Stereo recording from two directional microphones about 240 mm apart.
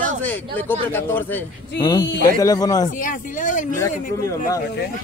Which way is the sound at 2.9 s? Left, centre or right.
Left.